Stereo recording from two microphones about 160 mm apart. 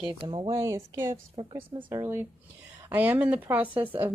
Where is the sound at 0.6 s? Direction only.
20° right (ahead or behind).